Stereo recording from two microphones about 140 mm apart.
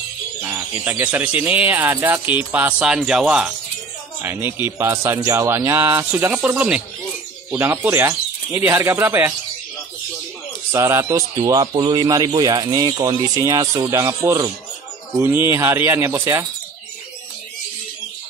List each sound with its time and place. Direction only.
0.4 s speech: 15° right (ahead or behind)
4.2 s speech: 15° right (ahead or behind)
10.7 s a man's voice: 20° right (ahead or behind)